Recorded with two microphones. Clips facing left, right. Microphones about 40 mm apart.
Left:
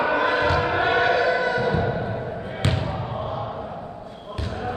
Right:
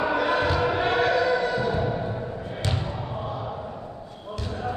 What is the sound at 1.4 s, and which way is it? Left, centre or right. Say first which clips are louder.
Music: left 3 dB; left.